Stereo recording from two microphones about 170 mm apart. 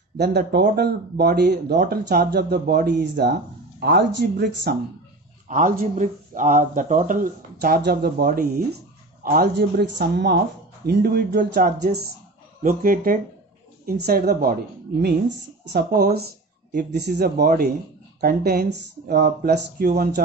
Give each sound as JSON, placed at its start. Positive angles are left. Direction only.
{"t": 0.2, "sound": "speech", "side_deg": -70}
{"t": 5.5, "sound": "a woman's voice", "side_deg": -50}
{"t": 13.8, "sound": "a woman's voice", "side_deg": -65}
{"t": 16.7, "sound": "speech", "side_deg": -80}